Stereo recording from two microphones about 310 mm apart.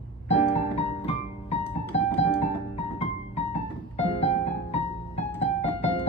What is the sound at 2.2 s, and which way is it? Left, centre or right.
Piano, centre.